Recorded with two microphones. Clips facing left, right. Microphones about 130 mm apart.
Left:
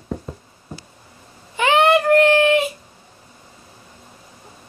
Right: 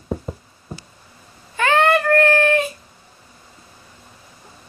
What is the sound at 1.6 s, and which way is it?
Child singing, 15° left (ahead or behind).